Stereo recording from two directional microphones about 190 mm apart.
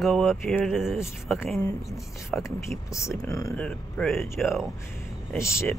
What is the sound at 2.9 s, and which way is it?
Speech, 15° left (ahead or behind).